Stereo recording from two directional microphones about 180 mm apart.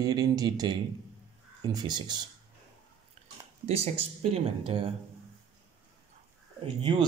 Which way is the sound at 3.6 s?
35° right (ahead or behind).